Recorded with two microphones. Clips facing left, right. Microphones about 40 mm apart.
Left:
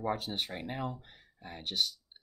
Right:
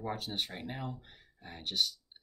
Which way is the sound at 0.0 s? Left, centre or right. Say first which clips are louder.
Left 3 dB; centre.